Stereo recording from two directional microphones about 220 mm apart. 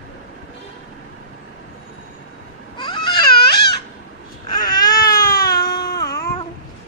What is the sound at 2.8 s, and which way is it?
Baby cry, 20° left (ahead or behind).